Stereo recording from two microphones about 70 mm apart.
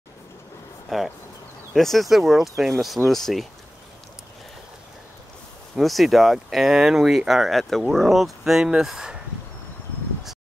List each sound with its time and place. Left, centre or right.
0.8 s speech: centre
5.8 s speech: centre